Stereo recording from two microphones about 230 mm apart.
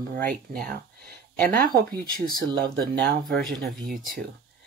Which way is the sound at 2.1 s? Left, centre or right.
Right.